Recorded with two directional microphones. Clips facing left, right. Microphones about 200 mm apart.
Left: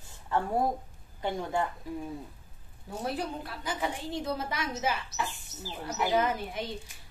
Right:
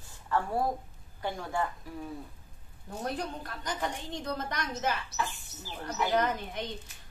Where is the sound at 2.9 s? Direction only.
5° left (ahead or behind).